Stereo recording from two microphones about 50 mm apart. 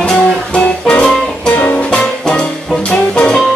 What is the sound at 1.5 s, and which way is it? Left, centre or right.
Music, left.